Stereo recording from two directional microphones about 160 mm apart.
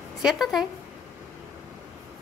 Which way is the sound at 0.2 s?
Centre (ahead or behind).